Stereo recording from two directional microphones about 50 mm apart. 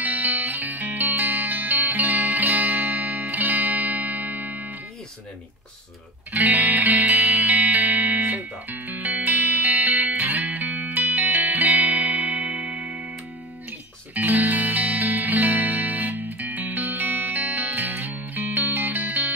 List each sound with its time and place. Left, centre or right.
0.0 s music: right
6.3 s music: right
14.1 s music: right